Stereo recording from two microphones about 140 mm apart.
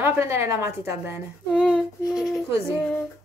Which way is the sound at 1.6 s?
Centre (ahead or behind).